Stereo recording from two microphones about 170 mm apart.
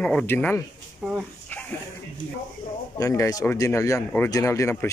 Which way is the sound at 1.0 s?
10° right (ahead or behind).